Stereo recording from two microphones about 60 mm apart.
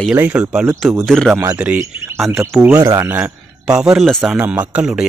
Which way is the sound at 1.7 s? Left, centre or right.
Right.